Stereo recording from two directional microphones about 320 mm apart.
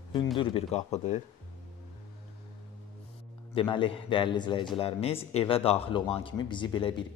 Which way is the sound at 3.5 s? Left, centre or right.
Centre.